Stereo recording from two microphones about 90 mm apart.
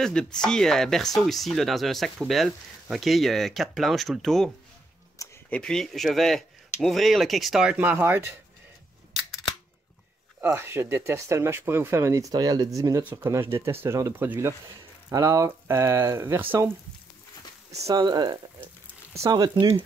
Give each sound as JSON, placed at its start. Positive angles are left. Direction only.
{"t": 0.0, "sound": "speech", "side_deg": 5}
{"t": 5.5, "sound": "speech", "side_deg": 10}
{"t": 7.7, "sound": "speech", "side_deg": -15}
{"t": 10.4, "sound": "speech", "side_deg": -30}
{"t": 15.0, "sound": "speech", "side_deg": -35}
{"t": 17.6, "sound": "speech", "side_deg": -35}
{"t": 18.0, "sound": "speech", "side_deg": -50}